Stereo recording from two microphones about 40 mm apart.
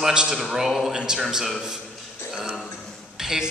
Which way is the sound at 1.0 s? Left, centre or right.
Right.